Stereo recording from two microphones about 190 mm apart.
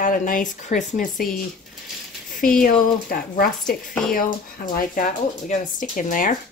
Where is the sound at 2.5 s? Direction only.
50° left (ahead or behind).